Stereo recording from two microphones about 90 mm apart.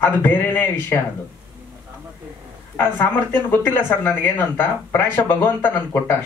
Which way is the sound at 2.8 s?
20° left (ahead or behind).